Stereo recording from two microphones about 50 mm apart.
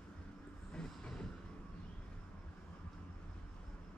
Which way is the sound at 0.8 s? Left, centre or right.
Centre.